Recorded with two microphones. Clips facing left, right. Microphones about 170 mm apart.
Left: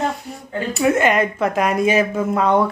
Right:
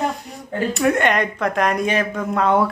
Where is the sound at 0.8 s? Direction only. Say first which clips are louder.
Left 3 dB; 5° left (ahead or behind).